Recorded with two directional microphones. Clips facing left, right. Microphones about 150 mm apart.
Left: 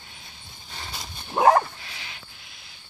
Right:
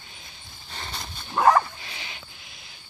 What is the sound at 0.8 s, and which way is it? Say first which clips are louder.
Dog: right 1 dB; 10° left (ahead or behind).